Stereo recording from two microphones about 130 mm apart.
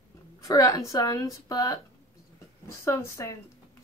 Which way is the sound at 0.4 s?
25° left (ahead or behind).